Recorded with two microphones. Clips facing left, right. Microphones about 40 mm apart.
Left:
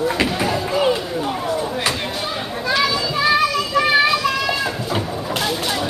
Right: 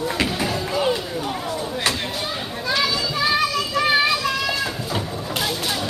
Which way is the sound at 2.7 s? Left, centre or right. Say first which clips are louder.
Left 3 dB; centre.